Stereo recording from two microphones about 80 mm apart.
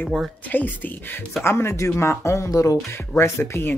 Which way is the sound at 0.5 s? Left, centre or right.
Left.